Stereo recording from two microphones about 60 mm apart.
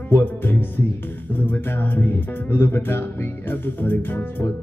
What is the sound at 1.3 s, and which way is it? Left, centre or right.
Speech, left.